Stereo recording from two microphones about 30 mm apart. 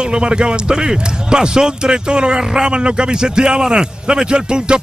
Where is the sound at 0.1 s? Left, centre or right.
Right.